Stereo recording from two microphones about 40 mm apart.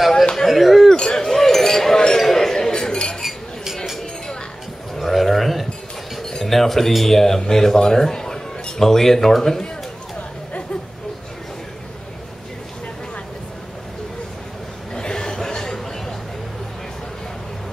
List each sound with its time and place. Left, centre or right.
0.5 s speech: centre
0.9 s speech: centre
1.2 s chink: centre
3.2 s dishes: centre
4.9 s a sound: centre
6.2 s speech: centre
15.0 s chuckle: centre